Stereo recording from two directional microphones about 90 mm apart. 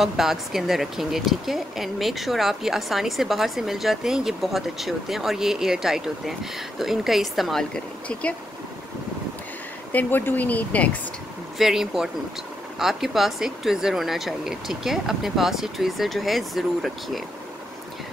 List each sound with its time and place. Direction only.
0.0 s speech: 5° right (ahead or behind); by 8.4 s 15° left (ahead or behind)
9.9 s speech: 20° left (ahead or behind)
11.5 s speech: 5° right (ahead or behind)